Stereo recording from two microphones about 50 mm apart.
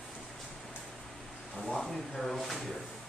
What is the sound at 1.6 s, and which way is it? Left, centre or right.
Speech, centre.